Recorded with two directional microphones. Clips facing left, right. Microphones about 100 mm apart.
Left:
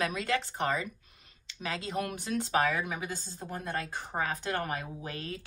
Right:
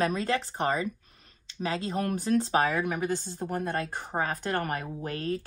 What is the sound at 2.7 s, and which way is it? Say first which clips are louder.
Speech: right 6 dB; 50° right (ahead or behind).